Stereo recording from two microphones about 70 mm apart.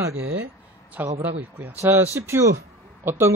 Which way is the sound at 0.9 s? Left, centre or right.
Right.